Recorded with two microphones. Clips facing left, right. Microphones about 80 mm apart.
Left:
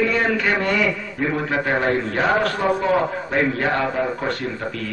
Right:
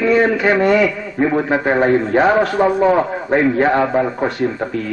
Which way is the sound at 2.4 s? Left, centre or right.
Centre.